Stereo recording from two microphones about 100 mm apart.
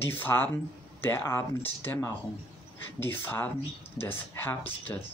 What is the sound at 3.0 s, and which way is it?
Speech, 20° left (ahead or behind).